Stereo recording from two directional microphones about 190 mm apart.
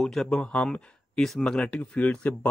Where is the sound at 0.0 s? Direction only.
Centre (ahead or behind).